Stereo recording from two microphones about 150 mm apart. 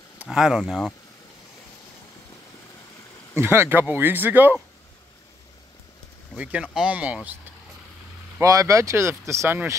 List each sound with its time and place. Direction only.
0.2 s speech: 5° right (ahead or behind)
3.3 s speech: 15° right (ahead or behind)
6.3 s speech: 10° right (ahead or behind)
8.4 s speech: 20° right (ahead or behind)